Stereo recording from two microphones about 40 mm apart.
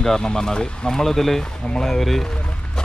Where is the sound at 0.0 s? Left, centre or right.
Centre.